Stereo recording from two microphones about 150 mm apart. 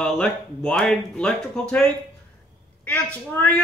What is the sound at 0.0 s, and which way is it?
Speech, 5° left (ahead or behind).